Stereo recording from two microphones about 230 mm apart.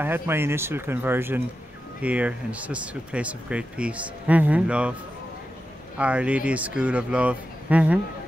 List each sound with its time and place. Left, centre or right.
0.0 s speech: centre
5.9 s speech: centre